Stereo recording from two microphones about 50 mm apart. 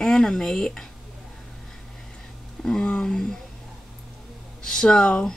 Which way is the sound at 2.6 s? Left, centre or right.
Centre.